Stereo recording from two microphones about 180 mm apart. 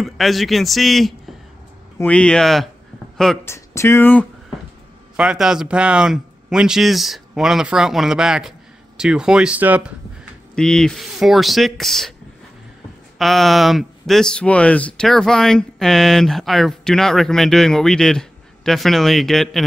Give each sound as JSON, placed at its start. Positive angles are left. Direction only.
{"t": 0.0, "sound": "speech", "side_deg": 0}
{"t": 3.4, "sound": "speech", "side_deg": 15}
{"t": 5.1, "sound": "speech", "side_deg": -5}
{"t": 10.5, "sound": "speech", "side_deg": 5}
{"t": 13.2, "sound": "speech", "side_deg": 0}